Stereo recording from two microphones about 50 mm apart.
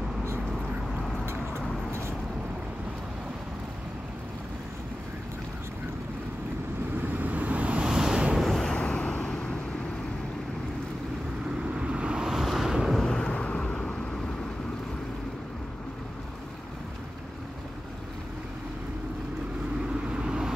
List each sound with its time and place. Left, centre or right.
1.2 s vehicle: right
7.0 s vehicle: right
7.9 s vehicle: centre
8.7 s vehicle: left
11.7 s vehicle: right
12.3 s wind noise: centre
12.9 s vehicle: centre
20.1 s vehicle: centre